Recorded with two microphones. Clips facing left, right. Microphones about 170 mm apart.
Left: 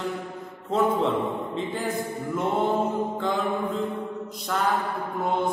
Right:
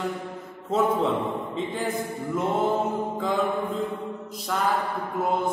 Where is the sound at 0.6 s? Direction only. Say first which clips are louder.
Even; centre (ahead or behind).